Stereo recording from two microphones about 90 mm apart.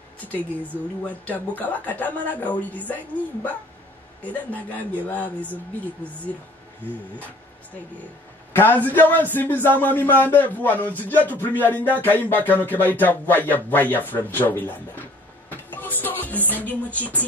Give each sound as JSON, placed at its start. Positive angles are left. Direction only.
{"t": 1.2, "sound": "speech", "side_deg": 20}
{"t": 4.2, "sound": "speech", "side_deg": 15}
{"t": 8.5, "sound": "speech", "side_deg": 20}
{"t": 15.5, "sound": "music", "side_deg": 20}